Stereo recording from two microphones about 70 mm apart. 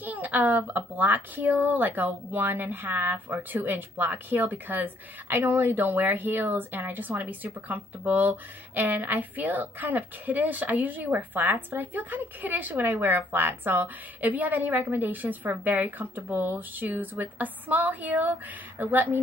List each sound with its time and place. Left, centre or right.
0.0 s speech: right